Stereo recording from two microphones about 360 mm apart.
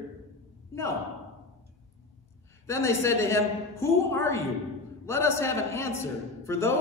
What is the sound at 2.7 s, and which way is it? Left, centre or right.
A man's voice, centre.